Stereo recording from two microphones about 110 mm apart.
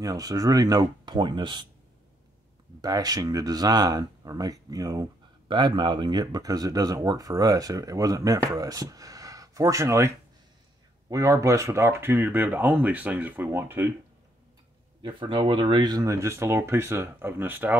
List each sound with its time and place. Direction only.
0.0 s speech: 35° right (ahead or behind)
2.8 s speech: 35° right (ahead or behind); by 13.8 s 20° right (ahead or behind)
15.0 s speech: 45° right (ahead or behind)
16.1 s speech: 25° right (ahead or behind)